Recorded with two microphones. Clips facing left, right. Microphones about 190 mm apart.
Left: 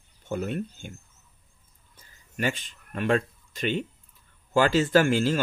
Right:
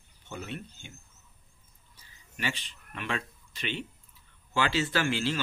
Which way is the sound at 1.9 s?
50° left (ahead or behind).